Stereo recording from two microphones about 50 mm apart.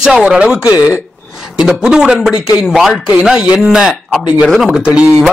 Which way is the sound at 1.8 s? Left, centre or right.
Centre.